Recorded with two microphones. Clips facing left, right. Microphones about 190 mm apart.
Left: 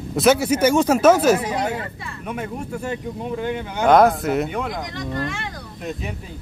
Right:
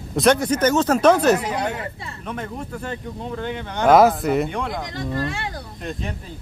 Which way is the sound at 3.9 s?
5° right (ahead or behind).